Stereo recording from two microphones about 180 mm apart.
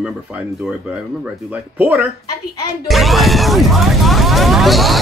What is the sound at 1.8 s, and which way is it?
Speech, 10° right (ahead or behind).